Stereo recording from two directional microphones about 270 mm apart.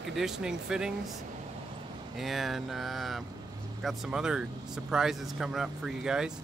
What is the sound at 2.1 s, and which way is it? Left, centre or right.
Speech, centre.